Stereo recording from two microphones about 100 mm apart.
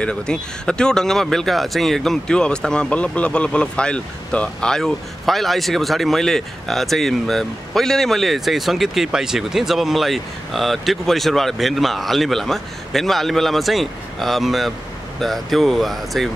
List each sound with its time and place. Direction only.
0.0 s speech: 10° left (ahead or behind)